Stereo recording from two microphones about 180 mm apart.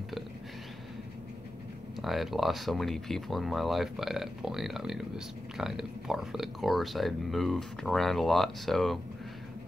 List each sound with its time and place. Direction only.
2.0 s speech: centre (ahead or behind)